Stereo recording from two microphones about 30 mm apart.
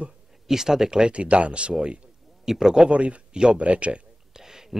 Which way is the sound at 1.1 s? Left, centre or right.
Right.